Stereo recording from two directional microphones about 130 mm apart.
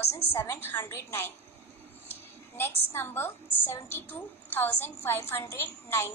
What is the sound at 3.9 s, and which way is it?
A woman's voice, 15° left (ahead or behind).